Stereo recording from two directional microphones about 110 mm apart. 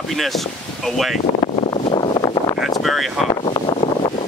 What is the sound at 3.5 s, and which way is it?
Wind noise, 45° left (ahead or behind).